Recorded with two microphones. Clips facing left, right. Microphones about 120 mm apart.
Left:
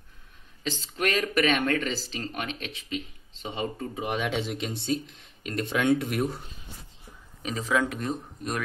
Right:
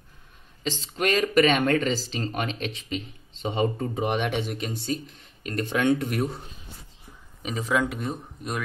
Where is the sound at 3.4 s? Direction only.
70° right (ahead or behind).